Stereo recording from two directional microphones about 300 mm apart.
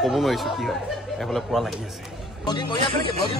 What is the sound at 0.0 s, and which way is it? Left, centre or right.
A man's voice, centre.